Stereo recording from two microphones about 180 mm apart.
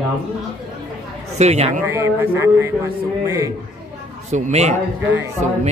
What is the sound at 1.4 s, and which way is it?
Speech, 35° right (ahead or behind).